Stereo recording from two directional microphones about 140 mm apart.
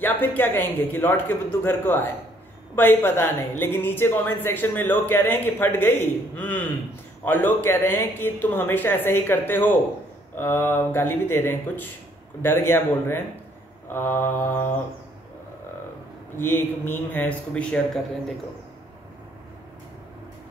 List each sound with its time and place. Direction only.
0.0 s a woman's voice: 15° left (ahead or behind)
16.3 s a woman's voice: 15° left (ahead or behind)